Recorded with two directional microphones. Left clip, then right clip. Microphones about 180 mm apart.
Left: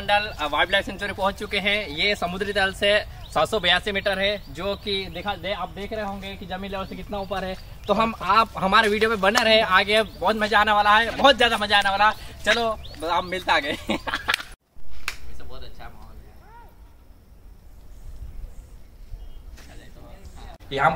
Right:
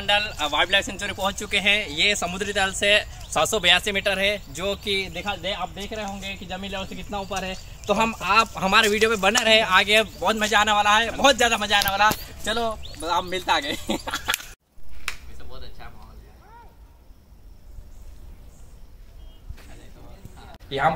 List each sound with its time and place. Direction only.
0.0 s speech: 10° left (ahead or behind)
3.3 s speech: centre (ahead or behind)
5.9 s speech: 15° left (ahead or behind)
13.0 s speech: 20° left (ahead or behind)
15.0 s finger snapping: 65° left (ahead or behind)
20.6 s speech: centre (ahead or behind)